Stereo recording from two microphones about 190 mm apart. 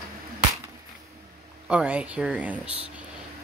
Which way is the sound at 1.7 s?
5° right (ahead or behind).